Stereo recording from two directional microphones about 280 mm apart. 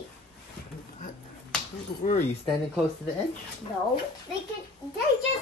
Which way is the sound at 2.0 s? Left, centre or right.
Left.